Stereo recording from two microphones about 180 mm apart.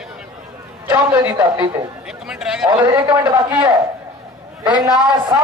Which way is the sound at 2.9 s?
15° right (ahead or behind).